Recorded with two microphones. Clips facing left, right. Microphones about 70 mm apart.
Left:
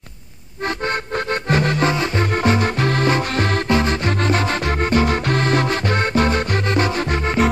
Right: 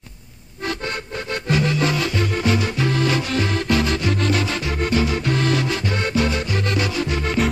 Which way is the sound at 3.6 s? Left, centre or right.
Left.